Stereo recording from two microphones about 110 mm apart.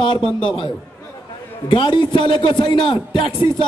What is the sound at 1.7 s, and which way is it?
A man's voice, 45° left (ahead or behind).